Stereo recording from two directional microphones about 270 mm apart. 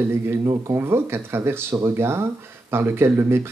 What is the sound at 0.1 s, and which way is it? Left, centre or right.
Speech, centre.